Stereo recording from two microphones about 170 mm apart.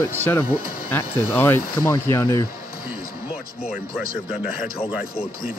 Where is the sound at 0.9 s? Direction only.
10° left (ahead or behind).